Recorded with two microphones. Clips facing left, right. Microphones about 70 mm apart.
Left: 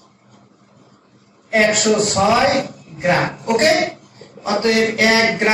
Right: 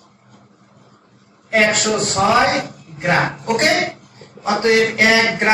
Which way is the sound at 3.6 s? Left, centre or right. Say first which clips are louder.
Left 3 dB; right.